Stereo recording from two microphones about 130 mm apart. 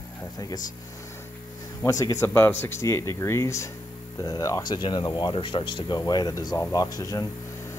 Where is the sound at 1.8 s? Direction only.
30° left (ahead or behind).